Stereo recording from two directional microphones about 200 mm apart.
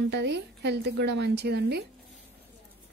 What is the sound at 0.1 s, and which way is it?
A woman's voice, 60° right (ahead or behind).